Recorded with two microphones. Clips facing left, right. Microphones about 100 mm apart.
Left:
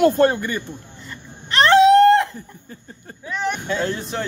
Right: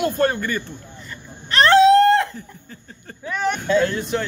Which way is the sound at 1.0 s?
20° left (ahead or behind).